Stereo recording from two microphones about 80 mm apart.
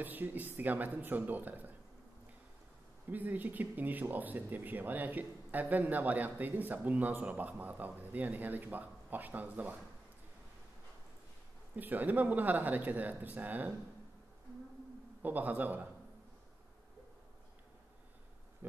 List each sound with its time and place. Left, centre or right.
0.0 s speech: right
3.1 s speech: right
11.7 s speech: right
15.2 s speech: right
18.6 s pig: right